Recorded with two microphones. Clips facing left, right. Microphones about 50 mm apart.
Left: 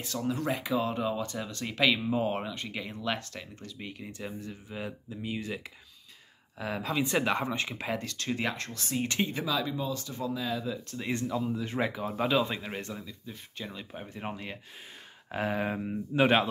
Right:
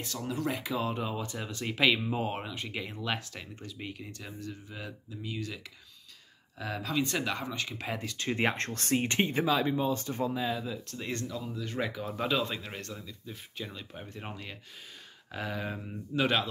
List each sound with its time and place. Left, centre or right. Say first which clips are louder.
0.0 s speech: left 2 dB; centre
4.0 s speech: left 3 dB; centre
6.6 s speech: left 1 dB; centre
7.8 s speech: left 1 dB; centre
8.4 s speech: right 3 dB; right
9.0 s speech: even; right
10.3 s speech: right 1 dB; right
10.6 s speech: left 2 dB; centre
11.1 s speech: left 6 dB; centre
11.8 s speech: left 2 dB; centre
15.3 s speech: left 5 dB; left